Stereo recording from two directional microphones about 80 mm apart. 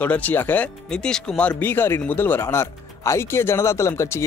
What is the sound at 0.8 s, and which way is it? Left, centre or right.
Speech, centre.